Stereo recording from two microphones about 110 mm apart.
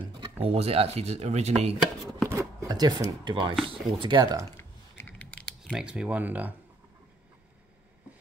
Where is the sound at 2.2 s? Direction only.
30° right (ahead or behind).